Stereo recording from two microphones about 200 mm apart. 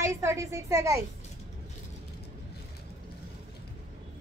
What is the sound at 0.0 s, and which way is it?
A woman's voice, 15° right (ahead or behind).